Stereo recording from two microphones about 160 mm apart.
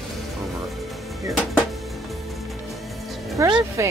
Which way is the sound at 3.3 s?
20° right (ahead or behind).